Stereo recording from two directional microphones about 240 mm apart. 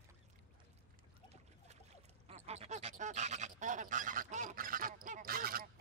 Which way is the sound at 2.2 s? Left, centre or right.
Right.